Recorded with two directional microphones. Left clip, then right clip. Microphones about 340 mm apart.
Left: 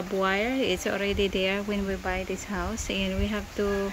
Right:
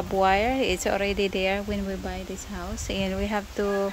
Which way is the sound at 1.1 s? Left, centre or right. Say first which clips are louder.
Right 1 dB; right.